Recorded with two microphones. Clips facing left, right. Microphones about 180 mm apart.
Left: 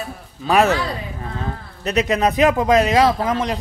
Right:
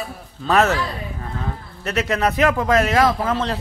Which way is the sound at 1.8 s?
20° left (ahead or behind).